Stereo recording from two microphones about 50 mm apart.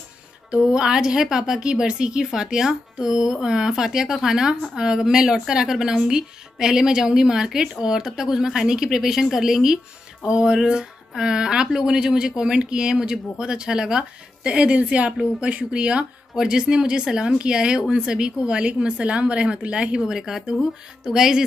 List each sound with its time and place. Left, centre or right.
0.5 s speech: centre
20.0 s speech: centre